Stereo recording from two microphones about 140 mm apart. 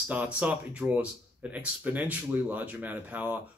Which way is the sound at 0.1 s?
10° right (ahead or behind).